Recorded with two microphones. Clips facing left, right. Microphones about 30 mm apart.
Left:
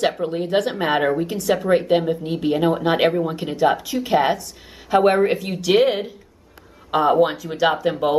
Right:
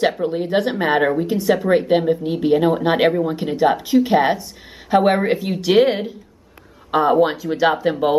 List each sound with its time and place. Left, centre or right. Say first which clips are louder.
0.2 s speech: right 1 dB; centre
2.7 s speech: right 2 dB; centre
7.2 s speech: right 2 dB; centre